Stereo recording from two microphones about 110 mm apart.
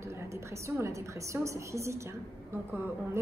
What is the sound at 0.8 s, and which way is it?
A woman's voice, 30° right (ahead or behind).